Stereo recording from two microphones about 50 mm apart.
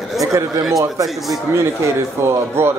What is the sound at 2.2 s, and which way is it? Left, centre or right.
Speech, right.